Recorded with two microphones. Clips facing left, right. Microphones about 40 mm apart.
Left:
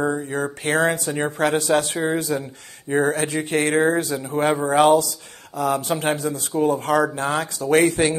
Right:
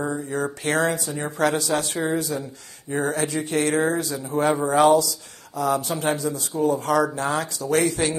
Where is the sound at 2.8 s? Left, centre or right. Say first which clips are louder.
Left 4 dB; left.